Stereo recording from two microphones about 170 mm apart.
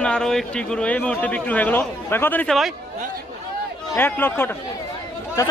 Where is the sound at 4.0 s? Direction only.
10° left (ahead or behind).